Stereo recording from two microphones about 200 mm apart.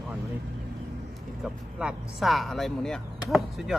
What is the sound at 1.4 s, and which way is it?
Speech, 5° right (ahead or behind).